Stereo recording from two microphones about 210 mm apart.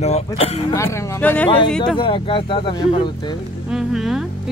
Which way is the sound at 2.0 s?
25° left (ahead or behind).